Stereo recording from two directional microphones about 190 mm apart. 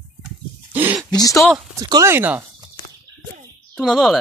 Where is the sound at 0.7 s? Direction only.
10° right (ahead or behind).